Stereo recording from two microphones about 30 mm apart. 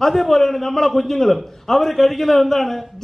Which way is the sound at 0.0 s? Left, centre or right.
Centre.